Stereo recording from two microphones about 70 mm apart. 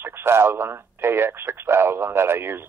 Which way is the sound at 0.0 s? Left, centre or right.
Right.